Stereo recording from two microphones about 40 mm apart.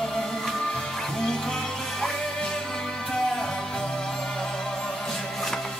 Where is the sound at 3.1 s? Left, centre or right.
Centre.